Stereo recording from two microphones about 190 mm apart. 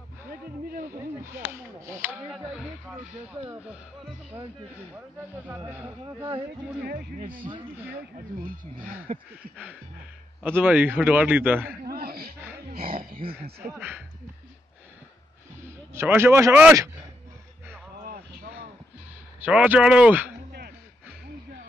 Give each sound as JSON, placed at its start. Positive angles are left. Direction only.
{"t": 0.9, "sound": "speech", "side_deg": -15}
{"t": 2.3, "sound": "speech", "side_deg": 0}
{"t": 5.7, "sound": "a man's voice", "side_deg": -10}
{"t": 10.4, "sound": "a man's voice", "side_deg": -10}
{"t": 11.8, "sound": "a sound", "side_deg": -55}
{"t": 13.6, "sound": "a man's voice", "side_deg": -10}
{"t": 15.9, "sound": "a man's voice", "side_deg": -15}
{"t": 18.0, "sound": "vehicle", "side_deg": -50}
{"t": 19.4, "sound": "a man's voice", "side_deg": -5}